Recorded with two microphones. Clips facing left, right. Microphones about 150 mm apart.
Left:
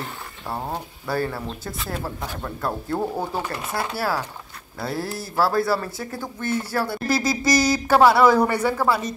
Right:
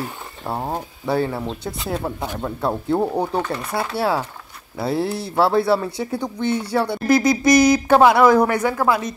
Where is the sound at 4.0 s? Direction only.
25° right (ahead or behind).